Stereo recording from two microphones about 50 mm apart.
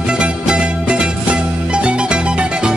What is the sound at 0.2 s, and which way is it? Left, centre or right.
Music, centre.